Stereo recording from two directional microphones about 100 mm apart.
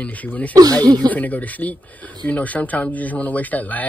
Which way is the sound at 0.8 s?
45° right (ahead or behind).